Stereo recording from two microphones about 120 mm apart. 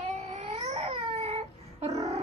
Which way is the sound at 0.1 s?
65° right (ahead or behind).